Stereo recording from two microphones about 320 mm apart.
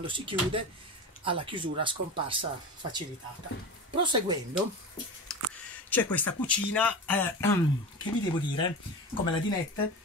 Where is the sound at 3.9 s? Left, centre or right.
Centre.